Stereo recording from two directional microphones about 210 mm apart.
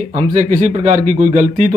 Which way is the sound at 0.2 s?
35° right (ahead or behind).